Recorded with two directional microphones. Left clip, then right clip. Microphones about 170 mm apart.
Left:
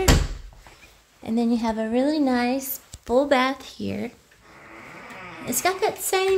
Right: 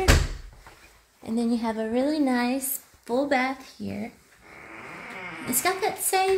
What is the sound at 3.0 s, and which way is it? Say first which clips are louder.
Speech: left 5 dB; 20° left (ahead or behind).